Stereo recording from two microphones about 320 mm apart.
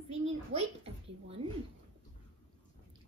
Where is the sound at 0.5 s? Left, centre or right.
Centre.